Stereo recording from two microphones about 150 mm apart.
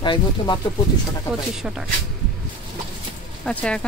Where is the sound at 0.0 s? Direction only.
30° left (ahead or behind).